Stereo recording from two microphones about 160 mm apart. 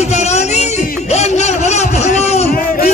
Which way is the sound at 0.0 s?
45° left (ahead or behind).